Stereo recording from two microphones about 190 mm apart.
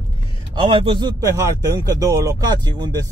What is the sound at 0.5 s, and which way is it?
Speech, 25° right (ahead or behind).